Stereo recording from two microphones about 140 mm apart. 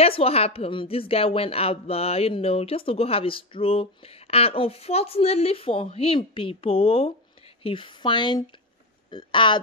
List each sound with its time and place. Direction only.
0.0 s speech: 45° left (ahead or behind)